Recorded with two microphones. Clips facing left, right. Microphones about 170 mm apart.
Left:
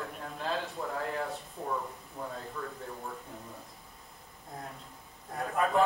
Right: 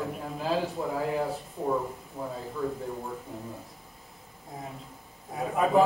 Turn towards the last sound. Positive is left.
turn(degrees=-5)  # may be behind; listen again after turning